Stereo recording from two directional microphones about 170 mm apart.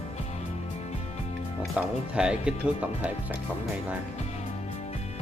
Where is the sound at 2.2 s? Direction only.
5° right (ahead or behind).